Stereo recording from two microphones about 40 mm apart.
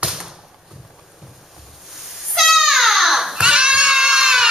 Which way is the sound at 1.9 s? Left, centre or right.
Centre.